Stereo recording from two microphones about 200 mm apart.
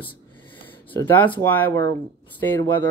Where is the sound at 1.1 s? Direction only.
10° left (ahead or behind).